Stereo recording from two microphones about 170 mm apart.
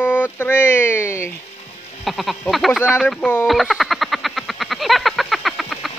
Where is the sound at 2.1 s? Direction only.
Centre (ahead or behind).